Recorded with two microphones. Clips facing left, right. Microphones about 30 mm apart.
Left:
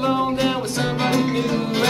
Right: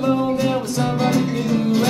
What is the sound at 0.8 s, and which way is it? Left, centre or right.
Music, left.